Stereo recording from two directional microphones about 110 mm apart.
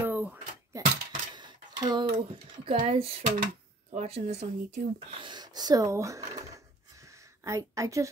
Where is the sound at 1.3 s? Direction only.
45° right (ahead or behind).